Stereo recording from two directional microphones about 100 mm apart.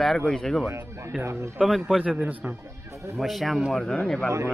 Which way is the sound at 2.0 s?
15° right (ahead or behind).